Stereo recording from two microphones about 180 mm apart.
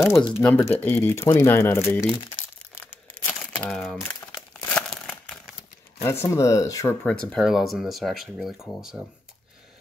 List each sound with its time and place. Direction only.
0.0 s speech: 15° left (ahead or behind)
2.8 s crumpling: 10° left (ahead or behind)
6.0 s speech: 15° left (ahead or behind); by 9.0 s 5° right (ahead or behind)